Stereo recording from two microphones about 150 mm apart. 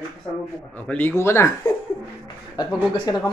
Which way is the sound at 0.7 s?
10° left (ahead or behind).